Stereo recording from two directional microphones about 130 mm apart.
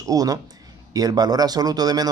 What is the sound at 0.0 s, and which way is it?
Speech, 25° right (ahead or behind).